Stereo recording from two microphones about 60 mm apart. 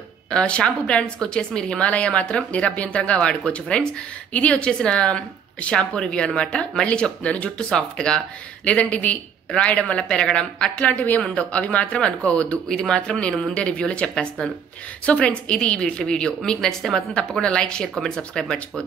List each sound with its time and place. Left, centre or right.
0.3 s a woman's voice: centre